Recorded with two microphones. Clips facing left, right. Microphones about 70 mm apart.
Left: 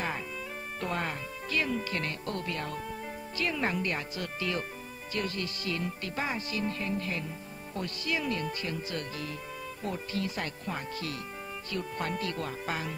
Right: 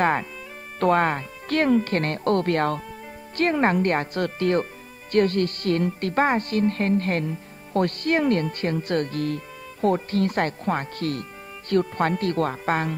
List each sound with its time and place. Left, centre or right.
0.0 s music: right
0.7 s speech: right